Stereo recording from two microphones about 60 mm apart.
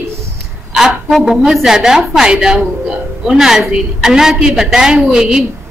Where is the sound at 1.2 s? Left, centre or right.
Centre.